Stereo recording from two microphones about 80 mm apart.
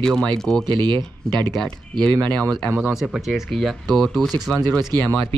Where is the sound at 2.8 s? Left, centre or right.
Centre.